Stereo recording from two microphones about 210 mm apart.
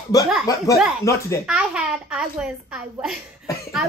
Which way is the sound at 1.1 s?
15° left (ahead or behind).